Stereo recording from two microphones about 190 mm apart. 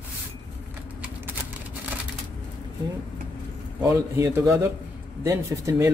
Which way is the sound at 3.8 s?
15° right (ahead or behind).